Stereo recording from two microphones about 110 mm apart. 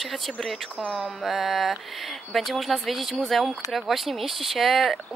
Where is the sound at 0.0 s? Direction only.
Centre (ahead or behind).